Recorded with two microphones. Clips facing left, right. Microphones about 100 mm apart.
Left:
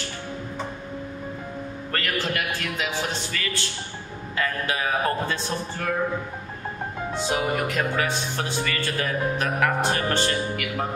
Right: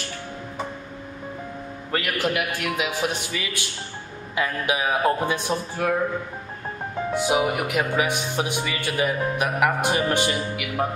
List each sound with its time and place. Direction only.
1.9 s speech: 10° right (ahead or behind)
7.2 s speech: 10° right (ahead or behind)